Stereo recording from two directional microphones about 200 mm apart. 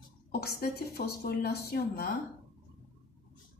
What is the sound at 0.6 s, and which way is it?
A woman's voice, 50° left (ahead or behind).